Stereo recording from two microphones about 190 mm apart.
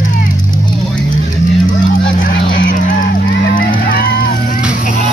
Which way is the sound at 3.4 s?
50° left (ahead or behind).